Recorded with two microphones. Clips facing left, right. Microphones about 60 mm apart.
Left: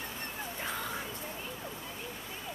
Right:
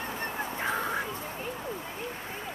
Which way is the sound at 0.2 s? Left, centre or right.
Right.